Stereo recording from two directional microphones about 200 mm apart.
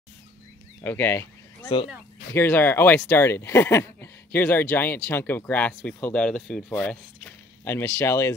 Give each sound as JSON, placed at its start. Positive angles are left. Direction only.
{"t": 0.8, "sound": "speech", "side_deg": 10}